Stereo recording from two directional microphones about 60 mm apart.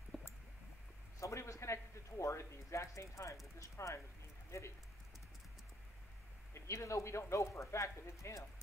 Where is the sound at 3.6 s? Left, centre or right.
Left.